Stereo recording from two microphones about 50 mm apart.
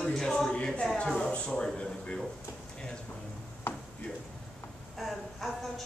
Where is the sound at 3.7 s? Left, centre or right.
Left.